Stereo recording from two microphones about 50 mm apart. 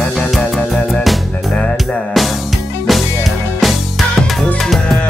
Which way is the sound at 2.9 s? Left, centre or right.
Centre.